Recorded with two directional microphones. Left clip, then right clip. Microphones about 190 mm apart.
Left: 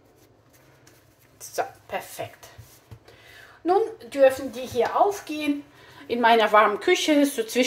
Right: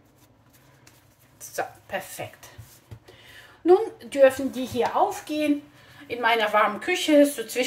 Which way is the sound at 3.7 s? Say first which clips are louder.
Right 3 dB; 20° left (ahead or behind).